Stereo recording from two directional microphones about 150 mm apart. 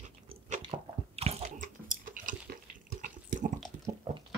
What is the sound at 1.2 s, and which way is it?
Chewing, 40° right (ahead or behind).